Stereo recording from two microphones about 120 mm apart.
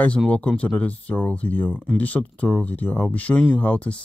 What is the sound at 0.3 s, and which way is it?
Speech, 10° left (ahead or behind).